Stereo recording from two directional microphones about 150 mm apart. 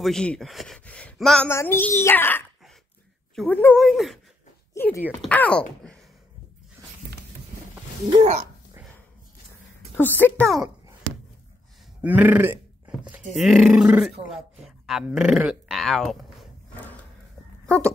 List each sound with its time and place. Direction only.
0.0 s speech: 5° left (ahead or behind)
1.5 s a child's voice: 15° left (ahead or behind)
3.7 s speech: centre (ahead or behind)
4.7 s a child's voice: 15° left (ahead or behind)
9.5 s a sound: 15° left (ahead or behind)
12.0 s a sound: 10° right (ahead or behind)
13.3 s speech: centre (ahead or behind)
17.6 s speech: 10° left (ahead or behind)